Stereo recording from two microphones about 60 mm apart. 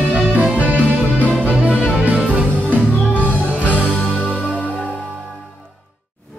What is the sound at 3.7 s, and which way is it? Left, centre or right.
Music, right.